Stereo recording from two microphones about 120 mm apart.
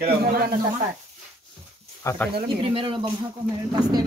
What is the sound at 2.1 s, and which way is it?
Speech, 25° left (ahead or behind).